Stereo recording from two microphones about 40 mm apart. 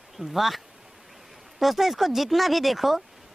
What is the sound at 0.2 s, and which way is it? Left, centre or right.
Speech, centre.